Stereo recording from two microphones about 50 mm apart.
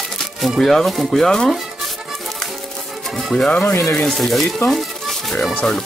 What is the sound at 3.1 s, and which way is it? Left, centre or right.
Music, centre.